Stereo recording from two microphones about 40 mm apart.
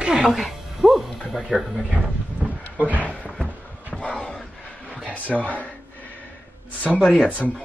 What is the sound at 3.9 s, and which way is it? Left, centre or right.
Dog, left.